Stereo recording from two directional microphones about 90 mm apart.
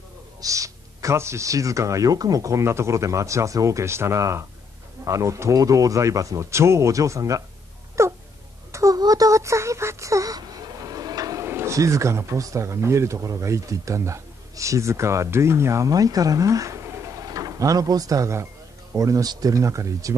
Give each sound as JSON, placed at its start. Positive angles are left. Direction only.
{"t": 0.4, "sound": "speech", "side_deg": -35}
{"t": 8.7, "sound": "a sound", "side_deg": -40}
{"t": 11.4, "sound": "speech", "side_deg": -30}